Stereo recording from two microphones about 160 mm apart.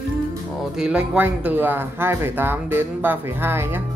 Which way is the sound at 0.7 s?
5° right (ahead or behind).